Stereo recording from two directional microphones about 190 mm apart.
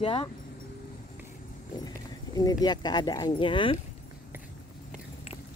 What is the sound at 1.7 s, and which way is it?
Speech, 20° left (ahead or behind).